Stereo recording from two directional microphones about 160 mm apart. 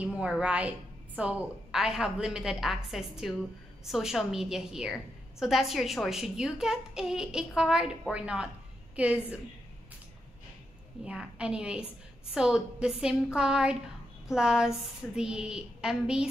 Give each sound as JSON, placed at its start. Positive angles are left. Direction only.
{"t": 0.0, "sound": "a woman's voice", "side_deg": -5}
{"t": 11.1, "sound": "a woman's voice", "side_deg": -5}